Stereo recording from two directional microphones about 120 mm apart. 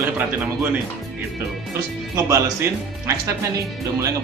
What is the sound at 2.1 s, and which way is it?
Speech, 25° right (ahead or behind).